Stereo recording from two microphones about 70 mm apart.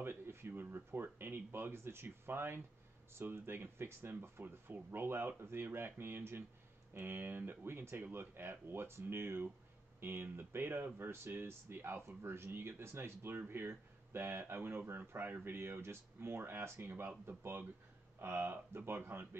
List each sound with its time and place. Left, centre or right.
0.0 s speech: right